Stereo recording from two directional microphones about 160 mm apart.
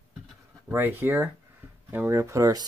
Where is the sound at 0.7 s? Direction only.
15° right (ahead or behind).